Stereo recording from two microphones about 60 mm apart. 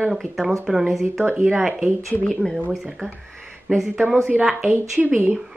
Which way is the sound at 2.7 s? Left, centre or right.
Centre.